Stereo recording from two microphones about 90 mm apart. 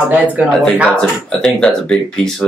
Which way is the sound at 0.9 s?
10° left (ahead or behind).